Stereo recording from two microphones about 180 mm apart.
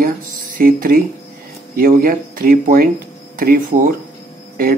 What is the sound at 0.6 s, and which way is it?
A man's voice, 55° right (ahead or behind).